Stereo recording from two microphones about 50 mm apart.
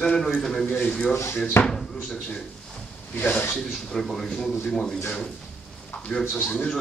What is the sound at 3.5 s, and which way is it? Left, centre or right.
Speech, centre.